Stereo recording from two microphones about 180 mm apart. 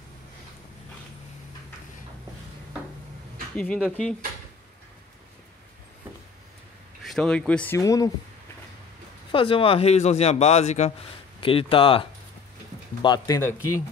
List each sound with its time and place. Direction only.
3.5 s speech: 5° left (ahead or behind)
7.0 s speech: centre (ahead or behind); by 8.1 s 20° left (ahead or behind)
9.3 s a man's voice: 30° left (ahead or behind)